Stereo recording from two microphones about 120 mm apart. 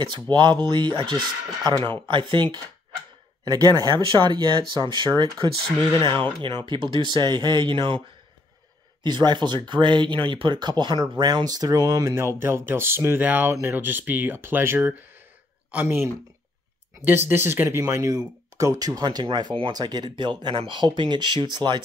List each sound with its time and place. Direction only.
0.0 s speech: 40° right (ahead or behind)
9.0 s speech: 40° right (ahead or behind)